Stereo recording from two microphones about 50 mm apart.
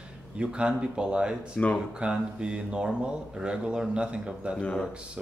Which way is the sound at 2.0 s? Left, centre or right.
Centre.